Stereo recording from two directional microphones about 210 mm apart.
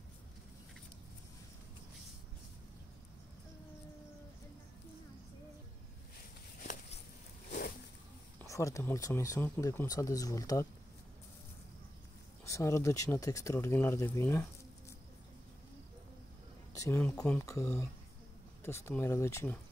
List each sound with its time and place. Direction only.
6.6 s a sound: 40° left (ahead or behind)
8.4 s speech: 15° left (ahead or behind)
12.4 s speech: 15° left (ahead or behind)
16.7 s speech: 15° left (ahead or behind)